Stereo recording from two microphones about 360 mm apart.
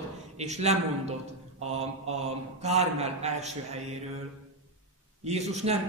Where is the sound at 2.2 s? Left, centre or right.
Centre.